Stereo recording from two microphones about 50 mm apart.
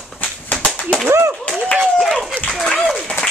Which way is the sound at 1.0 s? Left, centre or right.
Right.